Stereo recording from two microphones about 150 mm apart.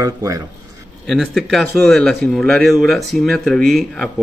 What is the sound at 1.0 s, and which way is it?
Speech, centre (ahead or behind).